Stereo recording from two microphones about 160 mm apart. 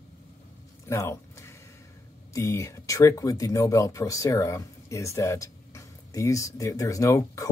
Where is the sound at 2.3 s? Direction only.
20° left (ahead or behind).